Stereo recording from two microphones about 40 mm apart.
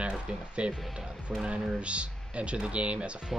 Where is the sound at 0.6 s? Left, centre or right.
Right.